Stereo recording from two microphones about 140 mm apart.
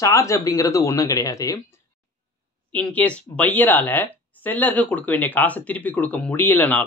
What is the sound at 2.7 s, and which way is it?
Speech, 10° left (ahead or behind).